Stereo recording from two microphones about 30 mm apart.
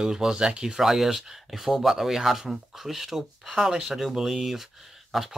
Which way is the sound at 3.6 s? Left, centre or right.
Centre.